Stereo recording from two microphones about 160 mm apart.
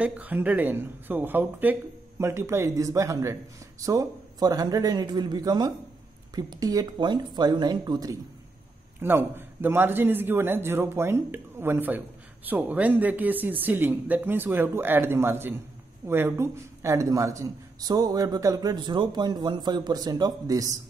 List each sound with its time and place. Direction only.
0.0 s a man's voice: 10° right (ahead or behind)
9.0 s a man's voice: 15° right (ahead or behind)